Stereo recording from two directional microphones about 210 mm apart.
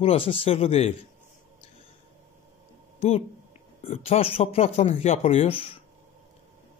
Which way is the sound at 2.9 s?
25° left (ahead or behind).